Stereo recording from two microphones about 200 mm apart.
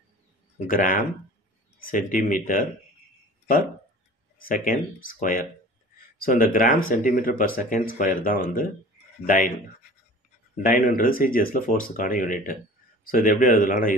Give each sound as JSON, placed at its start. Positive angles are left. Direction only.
{"t": 0.7, "sound": "speech", "side_deg": 45}
{"t": 4.5, "sound": "speech", "side_deg": 45}
{"t": 10.5, "sound": "speech", "side_deg": 45}